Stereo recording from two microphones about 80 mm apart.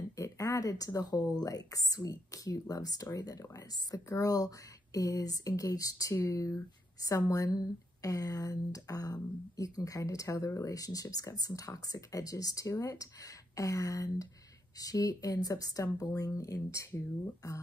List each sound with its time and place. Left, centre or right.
0.1 s speech: left